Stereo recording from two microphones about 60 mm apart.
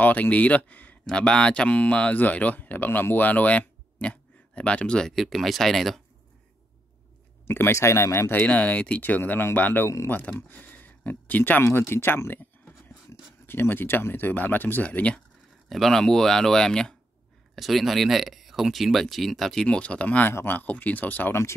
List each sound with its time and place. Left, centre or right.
0.0 s speech: left
1.0 s speech: centre
5.1 s speech: centre
7.4 s speech: left
8.3 s speech: left
10.5 s a sound: left
11.7 s speech: left
15.7 s speech: centre
17.6 s speech: centre
19.6 s speech: centre
20.2 s speech: left
21.3 s speech: left